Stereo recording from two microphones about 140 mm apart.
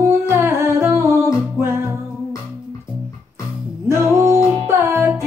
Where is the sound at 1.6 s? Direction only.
15° right (ahead or behind).